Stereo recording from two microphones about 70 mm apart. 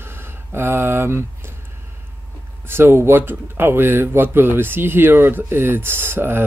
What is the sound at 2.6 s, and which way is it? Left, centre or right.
Speech, right.